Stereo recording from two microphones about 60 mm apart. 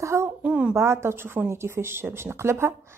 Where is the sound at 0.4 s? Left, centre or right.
Right.